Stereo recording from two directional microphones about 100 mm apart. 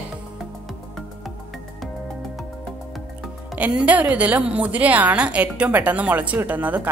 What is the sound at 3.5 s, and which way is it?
A woman's voice, 15° right (ahead or behind).